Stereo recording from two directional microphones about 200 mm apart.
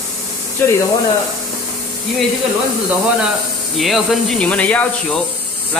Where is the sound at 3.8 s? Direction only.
Centre (ahead or behind).